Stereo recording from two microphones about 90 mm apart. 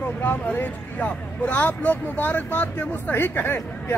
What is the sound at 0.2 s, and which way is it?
Speech, 20° left (ahead or behind).